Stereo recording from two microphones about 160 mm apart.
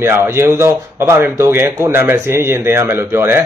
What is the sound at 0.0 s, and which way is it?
A man's voice, 15° right (ahead or behind).